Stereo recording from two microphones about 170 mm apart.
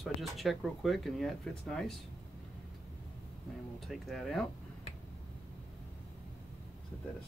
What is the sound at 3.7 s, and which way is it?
Speech, centre (ahead or behind).